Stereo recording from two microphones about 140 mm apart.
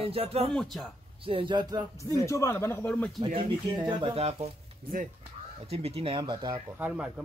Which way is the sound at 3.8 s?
40° right (ahead or behind).